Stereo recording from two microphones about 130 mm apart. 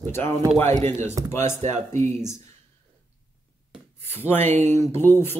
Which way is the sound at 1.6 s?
60° right (ahead or behind).